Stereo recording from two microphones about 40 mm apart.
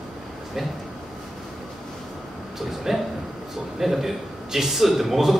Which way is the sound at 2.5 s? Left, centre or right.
Centre.